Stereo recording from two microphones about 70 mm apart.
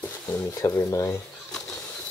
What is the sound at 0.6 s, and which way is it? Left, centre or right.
Speech, left.